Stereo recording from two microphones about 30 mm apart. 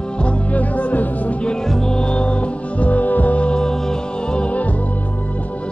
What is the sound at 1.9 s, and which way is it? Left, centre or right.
Music, left.